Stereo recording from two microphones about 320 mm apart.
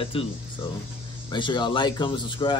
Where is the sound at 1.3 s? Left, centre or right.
Centre.